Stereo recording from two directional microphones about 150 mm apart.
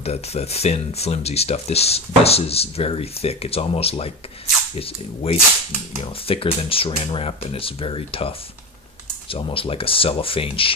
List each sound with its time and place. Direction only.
0.0 s speech: 45° left (ahead or behind)